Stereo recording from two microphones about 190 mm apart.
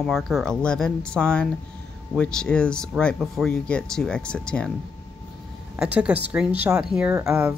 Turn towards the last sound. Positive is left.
turn(degrees=-10)  # may be behind; listen again after turning